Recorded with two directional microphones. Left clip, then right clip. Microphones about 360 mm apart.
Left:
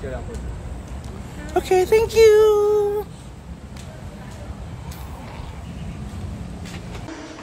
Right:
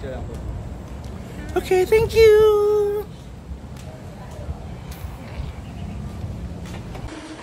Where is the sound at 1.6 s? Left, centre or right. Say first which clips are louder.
Left 1 dB; centre.